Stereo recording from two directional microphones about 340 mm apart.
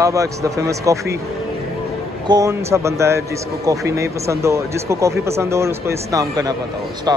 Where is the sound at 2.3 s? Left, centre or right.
Centre.